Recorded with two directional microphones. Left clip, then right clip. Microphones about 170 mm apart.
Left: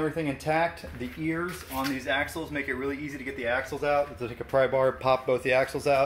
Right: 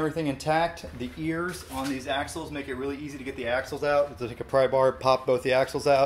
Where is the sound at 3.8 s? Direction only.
5° right (ahead or behind).